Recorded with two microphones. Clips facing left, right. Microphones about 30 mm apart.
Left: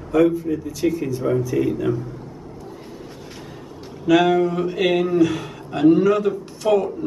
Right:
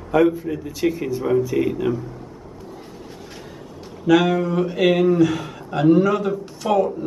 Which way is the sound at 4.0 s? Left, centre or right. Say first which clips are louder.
Left 1 dB; centre.